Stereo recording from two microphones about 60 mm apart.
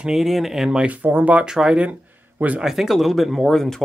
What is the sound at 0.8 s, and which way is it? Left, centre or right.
Speech, right.